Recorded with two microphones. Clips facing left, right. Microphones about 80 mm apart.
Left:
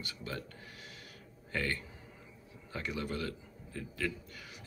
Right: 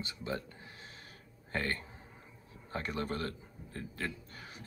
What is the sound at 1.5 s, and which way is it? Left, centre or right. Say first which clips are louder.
A man's voice: even; right.